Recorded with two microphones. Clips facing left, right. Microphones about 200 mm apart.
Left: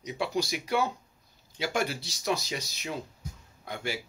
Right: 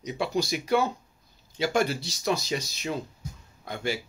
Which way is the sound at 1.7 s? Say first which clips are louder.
Right 4 dB; 10° left (ahead or behind).